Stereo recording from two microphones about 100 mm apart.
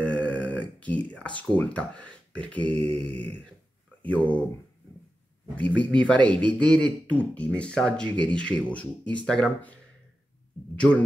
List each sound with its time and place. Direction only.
0.0 s a sound: 15° left (ahead or behind)
2.7 s mantra: 70° right (ahead or behind)
4.0 s speech: 15° left (ahead or behind)
5.8 s speech: 10° left (ahead or behind)
10.8 s speech: 10° left (ahead or behind)